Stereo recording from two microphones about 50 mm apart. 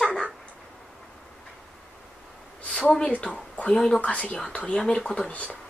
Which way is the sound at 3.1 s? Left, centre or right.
Left.